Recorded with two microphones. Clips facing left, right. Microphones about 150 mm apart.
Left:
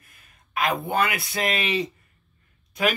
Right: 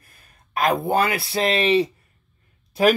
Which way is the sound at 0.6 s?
40° right (ahead or behind).